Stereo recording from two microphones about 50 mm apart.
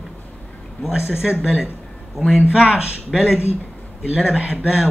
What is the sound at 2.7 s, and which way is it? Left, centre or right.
Speech, right.